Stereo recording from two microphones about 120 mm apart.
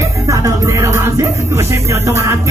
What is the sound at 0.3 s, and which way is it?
Music, 25° right (ahead or behind).